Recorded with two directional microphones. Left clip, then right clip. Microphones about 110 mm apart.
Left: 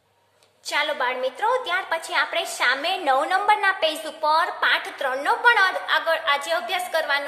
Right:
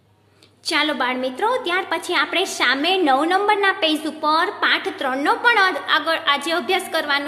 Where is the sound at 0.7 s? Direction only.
30° right (ahead or behind).